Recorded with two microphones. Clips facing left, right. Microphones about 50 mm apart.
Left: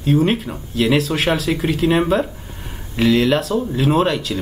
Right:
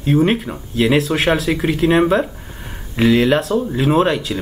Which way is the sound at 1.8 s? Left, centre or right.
Centre.